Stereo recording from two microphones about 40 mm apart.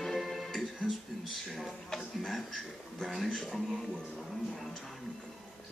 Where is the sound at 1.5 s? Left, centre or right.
Centre.